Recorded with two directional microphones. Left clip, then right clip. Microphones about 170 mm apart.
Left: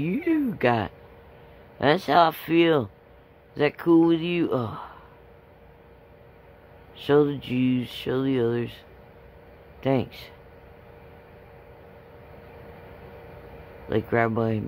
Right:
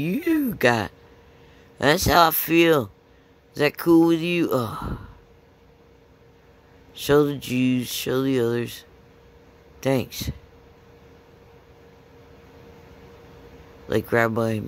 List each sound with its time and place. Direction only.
0.0 s speech: 15° right (ahead or behind)
7.0 s speech: 15° right (ahead or behind)
13.8 s speech: 15° right (ahead or behind)